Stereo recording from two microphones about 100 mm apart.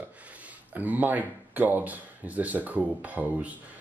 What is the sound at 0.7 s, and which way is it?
Speech, 15° right (ahead or behind).